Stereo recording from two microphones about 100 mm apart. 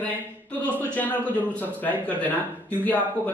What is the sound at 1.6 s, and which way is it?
Speech, 15° left (ahead or behind).